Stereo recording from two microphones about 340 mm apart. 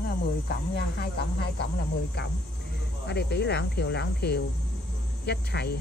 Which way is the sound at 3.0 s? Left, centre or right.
Left.